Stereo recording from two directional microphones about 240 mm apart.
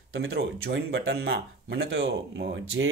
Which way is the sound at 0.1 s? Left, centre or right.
Right.